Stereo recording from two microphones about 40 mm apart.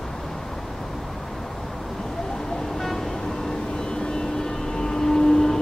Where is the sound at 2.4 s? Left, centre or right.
Centre.